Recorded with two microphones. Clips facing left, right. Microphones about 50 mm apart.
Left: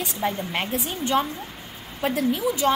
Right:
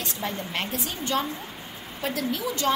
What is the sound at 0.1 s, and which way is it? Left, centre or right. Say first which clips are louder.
A woman's voice: left 5 dB; centre.